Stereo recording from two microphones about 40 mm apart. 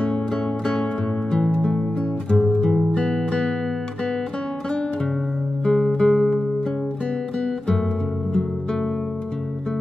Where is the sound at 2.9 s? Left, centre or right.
Left.